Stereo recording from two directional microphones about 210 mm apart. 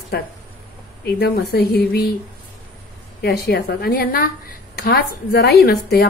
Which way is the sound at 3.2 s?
50° left (ahead or behind).